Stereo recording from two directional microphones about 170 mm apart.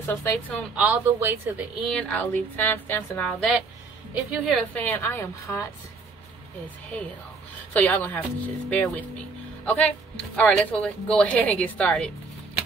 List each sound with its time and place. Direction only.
0.0 s speech: 10° left (ahead or behind)
0.7 s speech: 10° right (ahead or behind)
1.8 s a woman's voice: 5° left (ahead or behind)
7.7 s speech: 10° left (ahead or behind)